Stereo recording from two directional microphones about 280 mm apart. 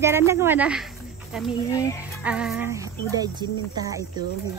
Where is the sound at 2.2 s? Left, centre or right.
Centre.